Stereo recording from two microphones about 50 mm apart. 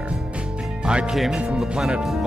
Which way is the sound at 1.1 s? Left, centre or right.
Centre.